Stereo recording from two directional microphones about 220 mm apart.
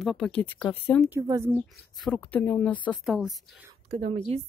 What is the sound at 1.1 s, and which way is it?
Speech, 10° right (ahead or behind).